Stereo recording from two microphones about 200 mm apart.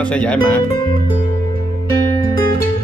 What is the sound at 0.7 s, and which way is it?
Music, 25° left (ahead or behind).